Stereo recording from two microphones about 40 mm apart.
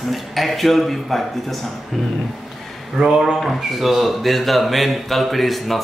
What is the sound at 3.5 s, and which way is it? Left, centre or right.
Speech, centre.